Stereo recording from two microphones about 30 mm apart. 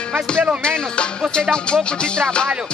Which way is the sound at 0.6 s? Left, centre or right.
Left.